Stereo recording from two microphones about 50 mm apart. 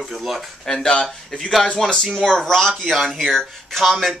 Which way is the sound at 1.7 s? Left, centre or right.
Centre.